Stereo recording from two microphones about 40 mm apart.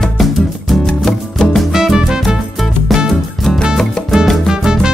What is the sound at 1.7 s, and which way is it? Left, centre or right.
Music, centre.